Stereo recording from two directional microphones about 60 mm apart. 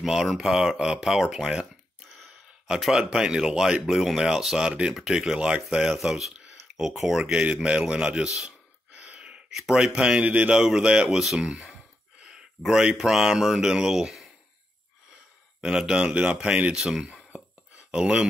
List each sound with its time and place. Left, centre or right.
0.0 s speech: centre
5.9 s speech: centre
7.5 s a sound: centre
10.5 s speech: centre
15.6 s speech: centre
16.7 s speech: centre